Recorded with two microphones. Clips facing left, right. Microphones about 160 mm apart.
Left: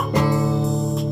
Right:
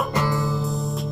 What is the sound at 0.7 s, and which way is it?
Music, centre (ahead or behind).